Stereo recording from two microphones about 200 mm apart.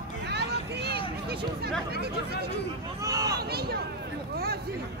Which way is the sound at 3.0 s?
15° right (ahead or behind).